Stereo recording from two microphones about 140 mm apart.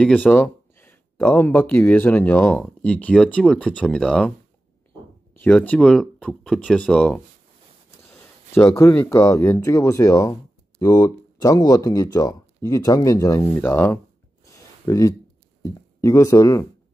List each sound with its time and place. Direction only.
0.0 s speech: 10° left (ahead or behind)
5.3 s speech: 10° left (ahead or behind)
8.0 s speech: 20° left (ahead or behind)
14.4 s a sound: 25° left (ahead or behind)
15.6 s speech: 20° left (ahead or behind)